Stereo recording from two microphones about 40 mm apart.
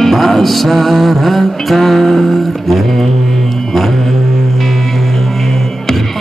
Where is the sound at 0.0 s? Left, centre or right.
Centre.